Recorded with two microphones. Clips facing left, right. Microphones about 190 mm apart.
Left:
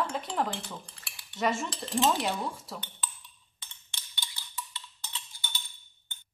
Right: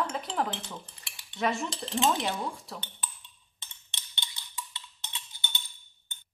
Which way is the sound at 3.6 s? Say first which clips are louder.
Right 1 dB; 25° right (ahead or behind).